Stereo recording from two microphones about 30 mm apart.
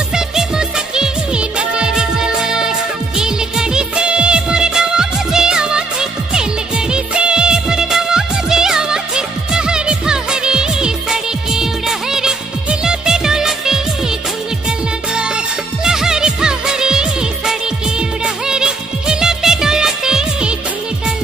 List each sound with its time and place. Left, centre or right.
0.1 s music: right
3.2 s music of bollywood: right
12.6 s music: right
15.8 s music: centre
18.2 s music of bollywood: right